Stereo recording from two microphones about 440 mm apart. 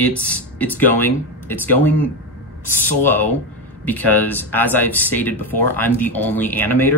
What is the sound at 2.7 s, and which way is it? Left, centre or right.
Speech, left.